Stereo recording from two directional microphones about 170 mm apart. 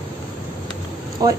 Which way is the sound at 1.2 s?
20° right (ahead or behind).